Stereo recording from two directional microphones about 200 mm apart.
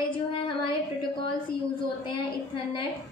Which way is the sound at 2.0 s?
25° left (ahead or behind).